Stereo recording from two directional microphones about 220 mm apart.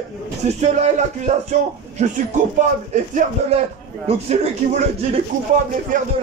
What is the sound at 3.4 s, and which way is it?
A man's voice, 30° right (ahead or behind).